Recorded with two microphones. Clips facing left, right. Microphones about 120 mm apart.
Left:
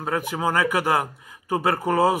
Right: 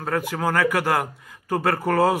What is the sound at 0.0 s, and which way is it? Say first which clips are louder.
Speech: even; 15° left (ahead or behind).